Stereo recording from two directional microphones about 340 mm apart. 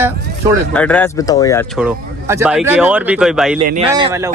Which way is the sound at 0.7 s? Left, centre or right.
Centre.